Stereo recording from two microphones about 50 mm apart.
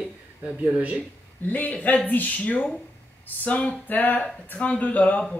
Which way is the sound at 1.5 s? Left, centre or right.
Left.